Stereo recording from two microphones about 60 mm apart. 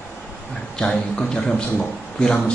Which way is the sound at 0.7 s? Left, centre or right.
Centre.